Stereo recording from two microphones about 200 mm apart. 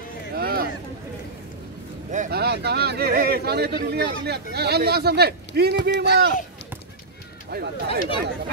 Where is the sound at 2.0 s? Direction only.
45° right (ahead or behind).